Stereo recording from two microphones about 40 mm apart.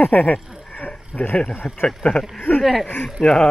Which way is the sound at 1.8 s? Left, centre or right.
Left.